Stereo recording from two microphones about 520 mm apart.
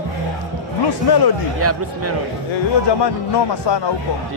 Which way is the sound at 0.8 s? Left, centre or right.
Left.